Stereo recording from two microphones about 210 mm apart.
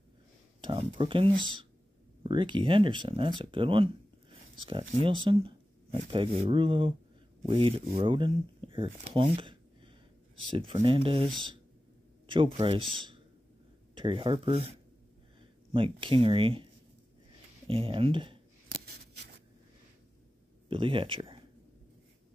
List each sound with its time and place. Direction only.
0.6 s speech: 25° right (ahead or behind)
17.6 s speech: 25° right (ahead or behind)
18.7 s scissors: 50° right (ahead or behind)
20.6 s speech: 25° right (ahead or behind)